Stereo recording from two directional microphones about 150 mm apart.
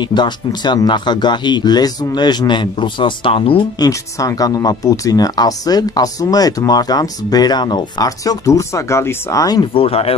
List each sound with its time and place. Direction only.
0.1 s speech: 30° left (ahead or behind)
4.2 s speech: 25° left (ahead or behind)
9.8 s speech: 40° left (ahead or behind)